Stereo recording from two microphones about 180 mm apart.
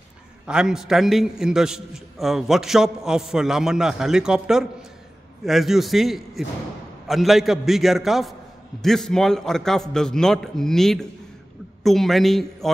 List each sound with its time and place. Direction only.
0.5 s a man's voice: 5° right (ahead or behind)